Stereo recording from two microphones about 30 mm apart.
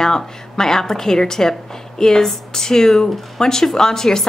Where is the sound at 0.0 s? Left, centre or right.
Centre.